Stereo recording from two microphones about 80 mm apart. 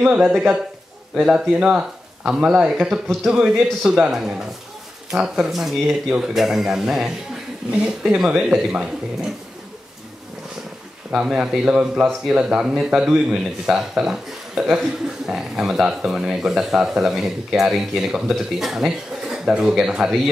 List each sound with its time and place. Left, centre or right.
1.1 s a man's voice: centre
11.2 s speech: centre